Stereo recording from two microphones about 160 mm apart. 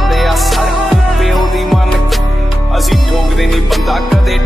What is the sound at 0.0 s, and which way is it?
Music, centre (ahead or behind).